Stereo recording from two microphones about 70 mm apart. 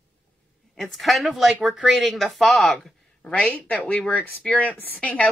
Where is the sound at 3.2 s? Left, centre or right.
Centre.